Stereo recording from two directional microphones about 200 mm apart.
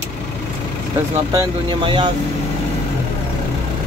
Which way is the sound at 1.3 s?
20° right (ahead or behind).